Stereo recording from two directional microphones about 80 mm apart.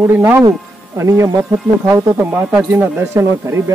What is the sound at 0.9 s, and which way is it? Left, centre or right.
Speech, right.